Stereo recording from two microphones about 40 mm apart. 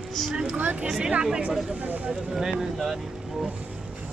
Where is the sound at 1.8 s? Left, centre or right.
Right.